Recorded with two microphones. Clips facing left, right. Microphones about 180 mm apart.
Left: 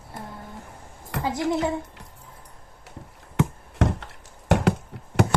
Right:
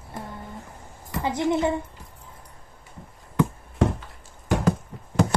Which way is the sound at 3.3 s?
75° left (ahead or behind).